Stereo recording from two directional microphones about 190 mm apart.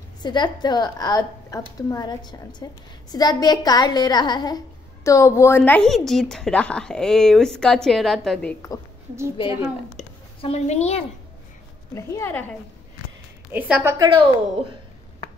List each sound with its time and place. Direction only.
0.2 s a woman's voice: 25° left (ahead or behind); by 8.5 s 5° left (ahead or behind)
9.9 s a sound: 35° left (ahead or behind)
11.9 s speech: 15° left (ahead or behind)
13.5 s a woman's voice: 10° right (ahead or behind)
13.9 s a woman's voice: 20° right (ahead or behind)